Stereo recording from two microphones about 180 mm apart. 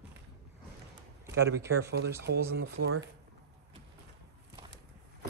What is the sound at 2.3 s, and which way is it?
Speech, 85° right.